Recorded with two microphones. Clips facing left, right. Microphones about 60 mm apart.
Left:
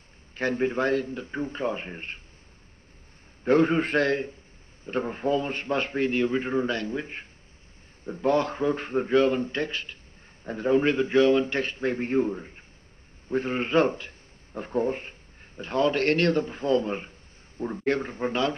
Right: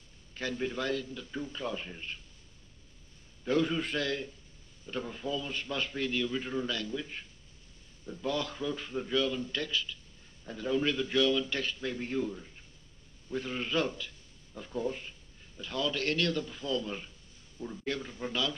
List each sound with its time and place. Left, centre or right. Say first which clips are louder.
0.3 s a man's voice: left 9 dB; left
3.4 s a man's voice: left 8 dB; left